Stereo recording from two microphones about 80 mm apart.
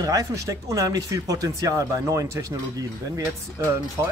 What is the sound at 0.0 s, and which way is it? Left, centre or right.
A man's voice, right.